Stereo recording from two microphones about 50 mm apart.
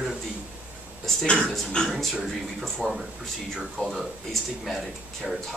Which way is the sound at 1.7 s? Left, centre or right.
Centre.